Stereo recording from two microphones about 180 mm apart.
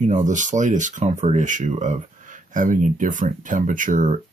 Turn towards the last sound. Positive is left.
turn(degrees=-45)  # may be behind; listen again after turning